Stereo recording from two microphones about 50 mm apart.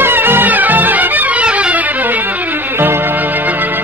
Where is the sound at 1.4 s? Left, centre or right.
Right.